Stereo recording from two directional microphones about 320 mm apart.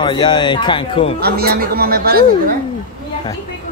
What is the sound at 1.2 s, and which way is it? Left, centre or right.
Speech, right.